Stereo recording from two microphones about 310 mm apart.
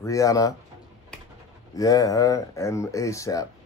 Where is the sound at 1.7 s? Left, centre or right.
Centre.